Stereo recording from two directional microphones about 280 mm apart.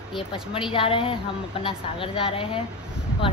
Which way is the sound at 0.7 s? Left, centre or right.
Centre.